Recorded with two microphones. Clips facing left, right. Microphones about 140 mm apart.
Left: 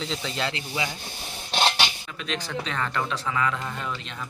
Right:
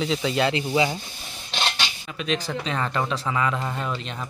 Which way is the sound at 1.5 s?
45° left (ahead or behind).